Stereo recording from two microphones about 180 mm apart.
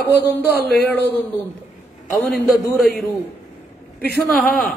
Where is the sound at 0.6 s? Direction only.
65° left (ahead or behind).